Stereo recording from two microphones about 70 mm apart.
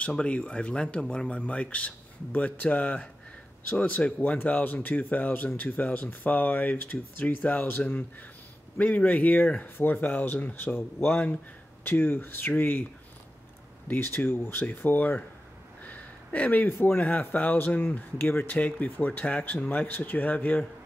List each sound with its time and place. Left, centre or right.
0.1 s speech: centre
13.8 s speech: left
15.8 s a sound: left
16.7 s speech: left